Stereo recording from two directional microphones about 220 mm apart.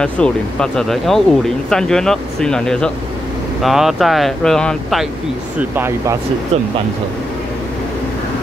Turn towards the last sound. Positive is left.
turn(degrees=-25)  # may be behind; listen again after turning